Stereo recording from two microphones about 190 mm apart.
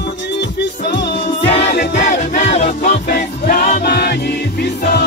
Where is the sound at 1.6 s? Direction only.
60° left (ahead or behind).